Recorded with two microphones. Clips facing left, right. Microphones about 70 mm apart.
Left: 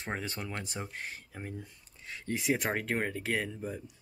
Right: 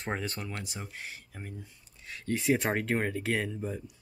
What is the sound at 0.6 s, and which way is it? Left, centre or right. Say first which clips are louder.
Speech: left 2 dB; left.